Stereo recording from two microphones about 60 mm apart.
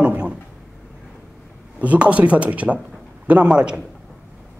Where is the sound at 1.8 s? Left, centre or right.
Right.